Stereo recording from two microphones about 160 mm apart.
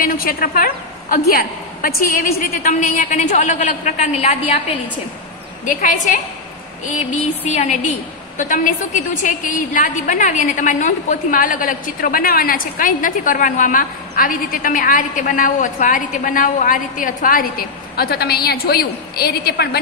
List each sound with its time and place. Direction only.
0.0 s a woman's voice: 65° left (ahead or behind); by 4.6 s 45° left (ahead or behind)
5.7 s a woman's voice: 55° left (ahead or behind)
7.5 s a woman's voice: 50° left (ahead or behind); by 19.8 s 80° left